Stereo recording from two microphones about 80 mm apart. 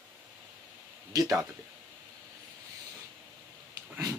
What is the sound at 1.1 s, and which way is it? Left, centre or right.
Speech, right.